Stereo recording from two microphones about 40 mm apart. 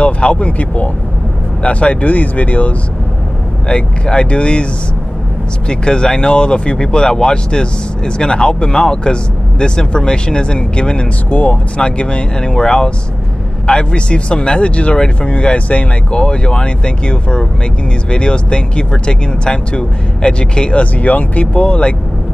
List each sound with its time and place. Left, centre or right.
0.0 s speech: left
3.6 s speech: left
5.7 s speech: left
11.2 s speech: left
11.7 s speech: left
20.8 s speech: left